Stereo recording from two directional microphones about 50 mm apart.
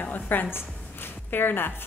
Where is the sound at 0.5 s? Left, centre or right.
Left.